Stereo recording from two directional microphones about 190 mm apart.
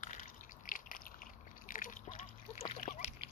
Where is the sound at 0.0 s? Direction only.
45° left (ahead or behind).